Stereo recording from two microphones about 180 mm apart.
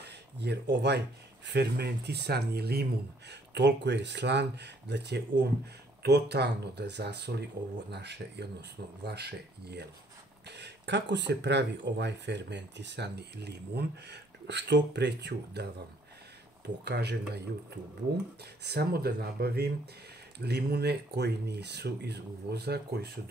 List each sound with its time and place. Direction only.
0.0 s speech: 70° right (ahead or behind)
16.6 s speech: 70° right (ahead or behind)
18.4 s speech: 65° right (ahead or behind)